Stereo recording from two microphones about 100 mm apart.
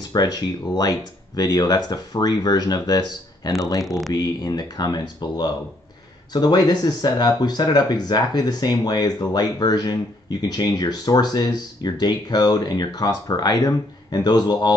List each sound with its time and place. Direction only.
0.1 s speech: 40° left (ahead or behind)